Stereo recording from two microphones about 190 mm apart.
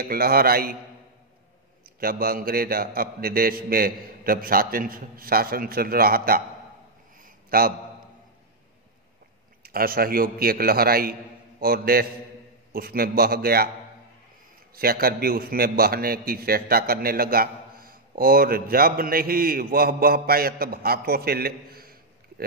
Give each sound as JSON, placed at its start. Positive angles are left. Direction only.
{"t": 0.0, "sound": "a man's voice", "side_deg": -55}
{"t": 2.0, "sound": "a man's voice", "side_deg": -50}
{"t": 7.4, "sound": "a man's voice", "side_deg": -50}
{"t": 9.6, "sound": "a man's voice", "side_deg": -50}
{"t": 14.8, "sound": "a man's voice", "side_deg": -50}